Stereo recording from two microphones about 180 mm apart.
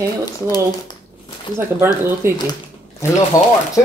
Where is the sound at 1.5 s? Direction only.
15° right (ahead or behind).